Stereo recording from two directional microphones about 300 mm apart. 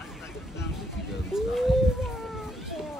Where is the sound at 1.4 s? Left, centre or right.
Centre.